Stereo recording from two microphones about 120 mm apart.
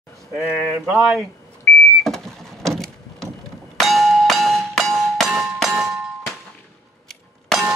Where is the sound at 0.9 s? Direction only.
Centre (ahead or behind).